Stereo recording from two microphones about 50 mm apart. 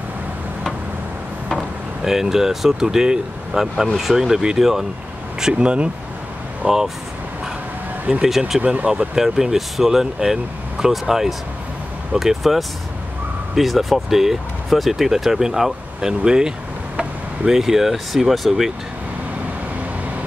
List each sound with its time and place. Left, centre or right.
2.0 s speech: centre
5.4 s speech: right
8.2 s speech: centre
9.1 s speech: centre